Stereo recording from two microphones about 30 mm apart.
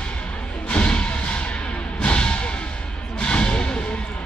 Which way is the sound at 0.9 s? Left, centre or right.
Left.